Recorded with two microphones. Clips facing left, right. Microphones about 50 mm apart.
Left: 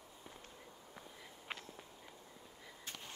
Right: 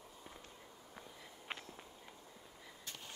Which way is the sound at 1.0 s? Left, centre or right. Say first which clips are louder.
Right 1 dB; centre.